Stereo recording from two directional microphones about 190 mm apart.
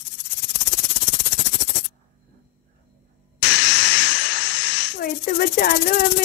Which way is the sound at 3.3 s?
65° left (ahead or behind).